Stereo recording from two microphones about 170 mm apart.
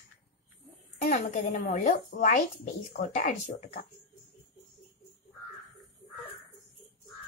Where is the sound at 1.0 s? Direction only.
45° left (ahead or behind).